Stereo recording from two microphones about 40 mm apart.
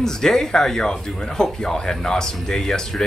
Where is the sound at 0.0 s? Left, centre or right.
Centre.